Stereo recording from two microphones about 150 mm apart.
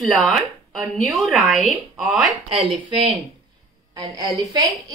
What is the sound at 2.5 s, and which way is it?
Speech, 40° right (ahead or behind).